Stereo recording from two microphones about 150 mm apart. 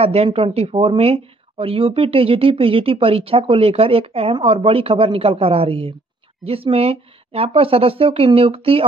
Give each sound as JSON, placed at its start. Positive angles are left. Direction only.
{"t": 0.0, "sound": "speech", "side_deg": -40}